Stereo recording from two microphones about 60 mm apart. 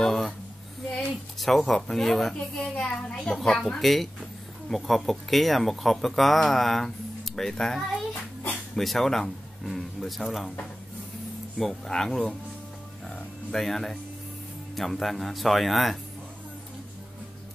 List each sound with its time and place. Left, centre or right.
0.0 s a sound: centre
1.4 s speech: centre
2.3 s speech: centre
11.5 s speech: centre
13.0 s music: centre
14.8 s speech: centre